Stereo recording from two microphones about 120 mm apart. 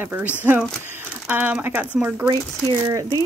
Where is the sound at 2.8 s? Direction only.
30° right (ahead or behind).